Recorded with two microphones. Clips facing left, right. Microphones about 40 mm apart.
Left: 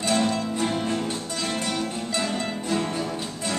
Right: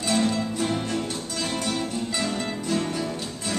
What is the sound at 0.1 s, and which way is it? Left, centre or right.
Music, centre.